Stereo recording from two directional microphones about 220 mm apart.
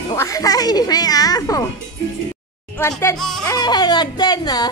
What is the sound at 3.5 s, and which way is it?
Speech, 20° left (ahead or behind).